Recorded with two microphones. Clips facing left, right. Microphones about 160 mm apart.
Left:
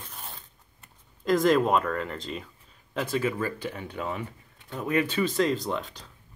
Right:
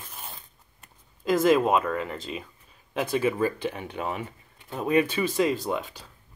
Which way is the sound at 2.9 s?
15° right (ahead or behind).